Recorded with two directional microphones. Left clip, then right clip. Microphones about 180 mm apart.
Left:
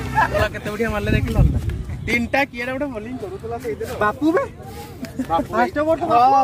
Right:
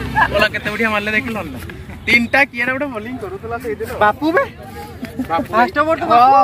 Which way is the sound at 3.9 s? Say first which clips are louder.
Right 5 dB; 40° left (ahead or behind).